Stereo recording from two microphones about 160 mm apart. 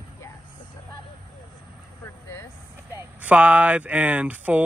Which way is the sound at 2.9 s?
10° right (ahead or behind).